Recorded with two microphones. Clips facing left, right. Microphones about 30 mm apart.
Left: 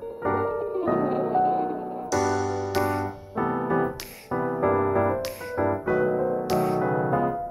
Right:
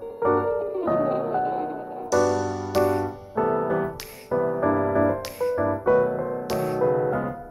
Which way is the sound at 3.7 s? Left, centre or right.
Left.